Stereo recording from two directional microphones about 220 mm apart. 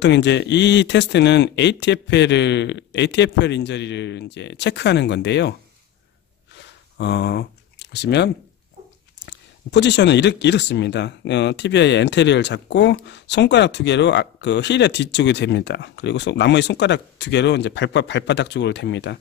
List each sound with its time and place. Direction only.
0.0 s speech: 55° left (ahead or behind)
6.5 s a sound: 50° left (ahead or behind)
9.2 s speech: 55° left (ahead or behind)